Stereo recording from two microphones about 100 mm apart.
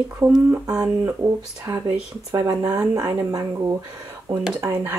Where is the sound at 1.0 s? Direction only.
25° right (ahead or behind).